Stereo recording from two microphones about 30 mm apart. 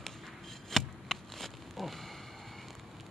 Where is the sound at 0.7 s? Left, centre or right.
Centre.